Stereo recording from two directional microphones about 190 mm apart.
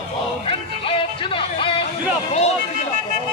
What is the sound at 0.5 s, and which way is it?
Music, 30° left (ahead or behind).